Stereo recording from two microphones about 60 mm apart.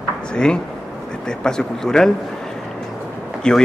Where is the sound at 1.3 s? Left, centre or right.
Centre.